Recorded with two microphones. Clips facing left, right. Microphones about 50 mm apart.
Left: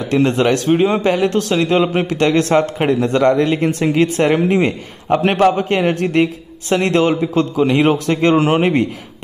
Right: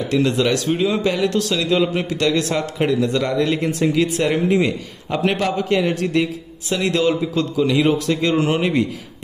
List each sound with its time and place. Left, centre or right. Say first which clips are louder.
0.1 s a man's voice: left 4 dB; left